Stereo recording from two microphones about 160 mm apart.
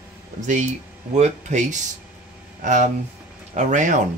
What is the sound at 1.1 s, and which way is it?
Speech, 45° right (ahead or behind).